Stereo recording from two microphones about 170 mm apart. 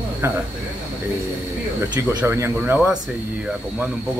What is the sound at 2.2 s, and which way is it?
Speech, 15° right (ahead or behind).